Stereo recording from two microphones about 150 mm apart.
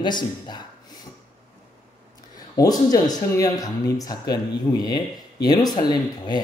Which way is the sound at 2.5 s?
25° left (ahead or behind).